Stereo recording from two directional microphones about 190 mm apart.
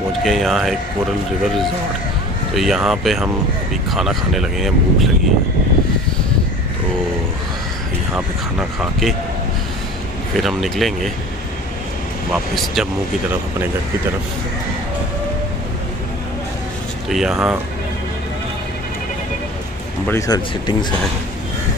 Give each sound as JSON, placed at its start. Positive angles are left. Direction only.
{"t": 0.2, "sound": "speech", "side_deg": 0}
{"t": 2.5, "sound": "speech", "side_deg": 0}
{"t": 8.1, "sound": "speech", "side_deg": -5}
{"t": 10.3, "sound": "speech", "side_deg": 0}
{"t": 12.3, "sound": "speech", "side_deg": 0}
{"t": 17.1, "sound": "speech", "side_deg": 0}
{"t": 20.1, "sound": "speech", "side_deg": 20}